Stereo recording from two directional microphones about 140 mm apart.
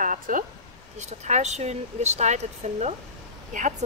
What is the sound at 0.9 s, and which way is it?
Speech, 55° right (ahead or behind).